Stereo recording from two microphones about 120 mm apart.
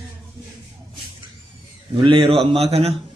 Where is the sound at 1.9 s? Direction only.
45° right (ahead or behind).